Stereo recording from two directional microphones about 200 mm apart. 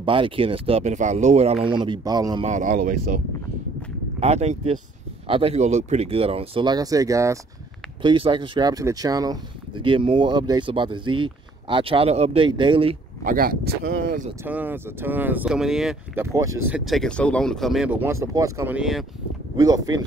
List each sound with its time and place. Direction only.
0.0 s speech: 25° right (ahead or behind)
2.4 s speech: 40° right (ahead or behind)
4.2 s speech: 30° right (ahead or behind)
13.2 s speech: 45° right (ahead or behind)
14.4 s speech: 10° right (ahead or behind)
16.3 s speech: 15° right (ahead or behind)
16.7 s speech: centre (ahead or behind)
18.0 s speech: 15° right (ahead or behind)
19.5 s speech: 20° right (ahead or behind)